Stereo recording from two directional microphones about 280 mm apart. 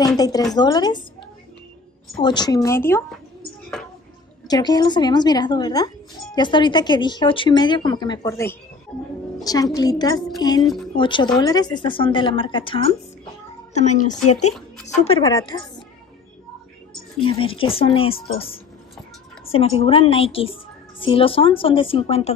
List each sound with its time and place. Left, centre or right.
0.2 s speech: centre
2.1 s speech: centre
4.5 s a woman's voice: centre
17.2 s a woman's voice: centre